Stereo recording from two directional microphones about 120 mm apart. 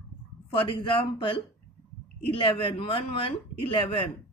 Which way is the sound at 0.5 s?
45° left (ahead or behind).